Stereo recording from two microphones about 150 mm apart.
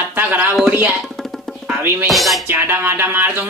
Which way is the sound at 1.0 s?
Centre (ahead or behind).